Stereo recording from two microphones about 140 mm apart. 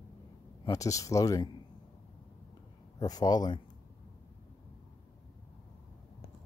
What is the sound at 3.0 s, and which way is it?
Speech, 30° left (ahead or behind).